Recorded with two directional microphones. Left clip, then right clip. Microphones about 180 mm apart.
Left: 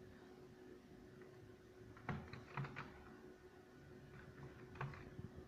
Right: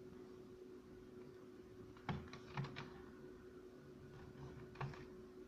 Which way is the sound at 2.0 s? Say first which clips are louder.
Right 1 dB; 20° right (ahead or behind).